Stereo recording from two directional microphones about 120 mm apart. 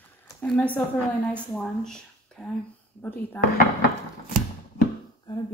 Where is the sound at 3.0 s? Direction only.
15° left (ahead or behind).